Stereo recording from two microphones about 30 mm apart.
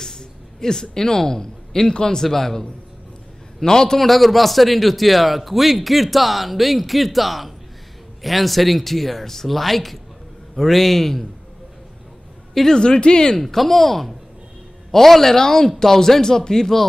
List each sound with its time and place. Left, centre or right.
0.0 s a man's voice: centre
4.0 s a man's voice: centre
12.6 s speech: left
13.4 s speech: centre